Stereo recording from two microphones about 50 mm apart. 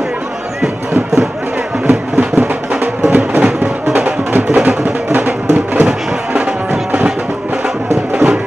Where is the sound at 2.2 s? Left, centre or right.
Right.